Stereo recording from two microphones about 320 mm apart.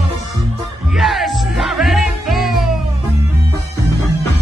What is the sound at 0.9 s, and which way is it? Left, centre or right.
Music, centre.